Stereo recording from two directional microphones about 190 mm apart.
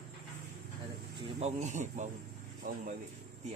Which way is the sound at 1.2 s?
35° right (ahead or behind).